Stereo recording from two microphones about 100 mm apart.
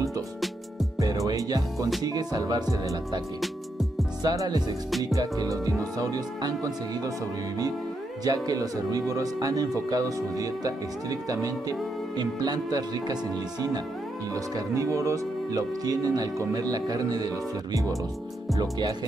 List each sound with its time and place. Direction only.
0.9 s music: 35° right (ahead or behind)
2.0 s speech: 40° right (ahead or behind)
4.2 s speech: 40° right (ahead or behind)
8.2 s speech: 40° right (ahead or behind)
14.3 s speech: 30° right (ahead or behind)
18.5 s speech: 45° right (ahead or behind)